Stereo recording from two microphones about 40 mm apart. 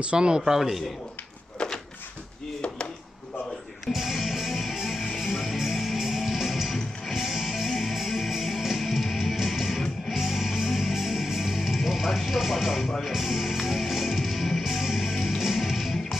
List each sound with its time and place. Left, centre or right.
0.0 s a man's voice: right
0.5 s a man's voice: centre
1.6 s a sound: left
3.8 s music: centre
12.3 s speech: centre
13.0 s music: centre